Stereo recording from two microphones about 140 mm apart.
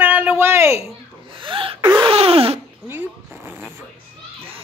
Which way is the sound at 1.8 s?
30° right (ahead or behind).